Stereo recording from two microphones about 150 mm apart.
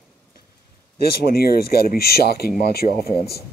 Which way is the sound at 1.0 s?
90° left.